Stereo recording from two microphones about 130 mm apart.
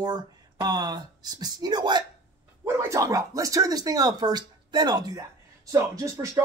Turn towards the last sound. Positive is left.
turn(degrees=-20)  # may be behind; listen again after turning